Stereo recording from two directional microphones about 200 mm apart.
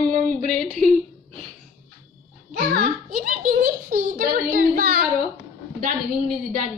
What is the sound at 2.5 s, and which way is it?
A child's voice, 45° right (ahead or behind).